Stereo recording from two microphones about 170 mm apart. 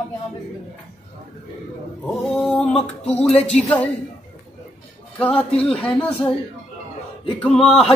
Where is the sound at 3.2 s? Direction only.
35° left (ahead or behind).